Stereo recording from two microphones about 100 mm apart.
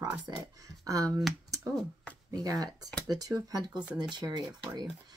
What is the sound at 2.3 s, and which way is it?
Speech, 40° right (ahead or behind).